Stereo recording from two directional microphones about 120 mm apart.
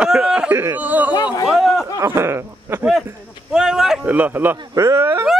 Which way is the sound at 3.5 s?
5° right (ahead or behind).